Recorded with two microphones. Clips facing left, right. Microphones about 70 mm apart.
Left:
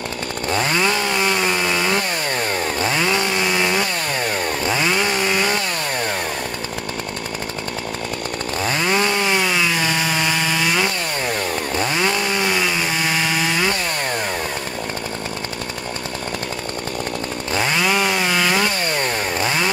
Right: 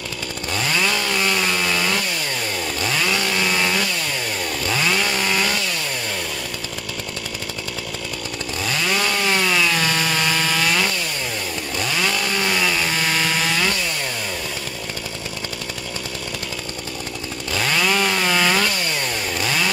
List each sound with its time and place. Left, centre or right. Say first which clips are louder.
0.5 s chainsaw: left 3 dB; left
8.6 s chainsaw: left 3 dB; left
11.7 s chainsaw: left 2 dB; left; by 13.7 s centre
17.6 s chainsaw: left 1 dB; centre
19.4 s chainsaw: left 1 dB; left